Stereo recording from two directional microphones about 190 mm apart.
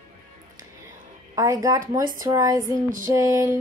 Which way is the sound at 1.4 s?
20° right (ahead or behind).